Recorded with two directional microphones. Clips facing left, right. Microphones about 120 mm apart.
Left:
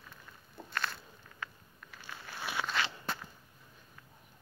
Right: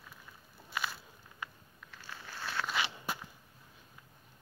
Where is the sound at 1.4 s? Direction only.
15° right (ahead or behind).